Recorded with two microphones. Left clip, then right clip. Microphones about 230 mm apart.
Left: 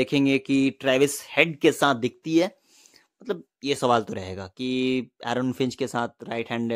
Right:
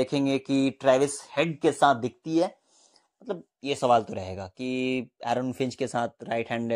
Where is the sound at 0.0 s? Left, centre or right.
Centre.